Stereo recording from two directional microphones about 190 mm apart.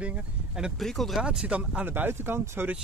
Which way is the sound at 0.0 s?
5° right (ahead or behind).